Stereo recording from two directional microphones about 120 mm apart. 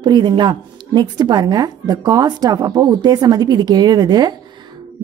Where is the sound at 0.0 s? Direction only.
35° right (ahead or behind).